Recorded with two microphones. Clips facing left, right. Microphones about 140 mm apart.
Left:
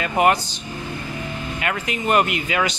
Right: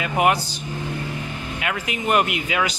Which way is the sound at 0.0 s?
5° right (ahead or behind).